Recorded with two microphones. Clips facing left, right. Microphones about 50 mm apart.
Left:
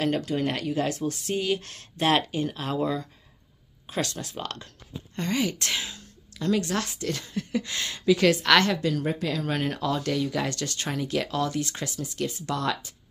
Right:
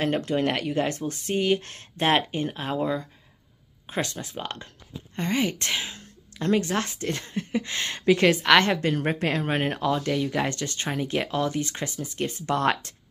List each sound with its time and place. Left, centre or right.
0.2 s speech: right
8.8 s a woman's voice: right
9.5 s speech: right